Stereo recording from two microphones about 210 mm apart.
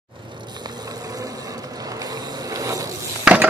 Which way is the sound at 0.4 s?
20° right (ahead or behind).